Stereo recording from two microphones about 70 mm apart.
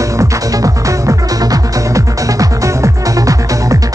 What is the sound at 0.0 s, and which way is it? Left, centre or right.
Music, right.